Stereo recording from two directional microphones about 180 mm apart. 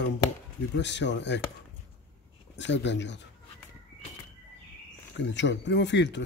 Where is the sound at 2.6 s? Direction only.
75° left (ahead or behind).